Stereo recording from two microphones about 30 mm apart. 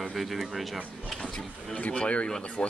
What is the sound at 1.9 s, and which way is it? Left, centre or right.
Speech, left.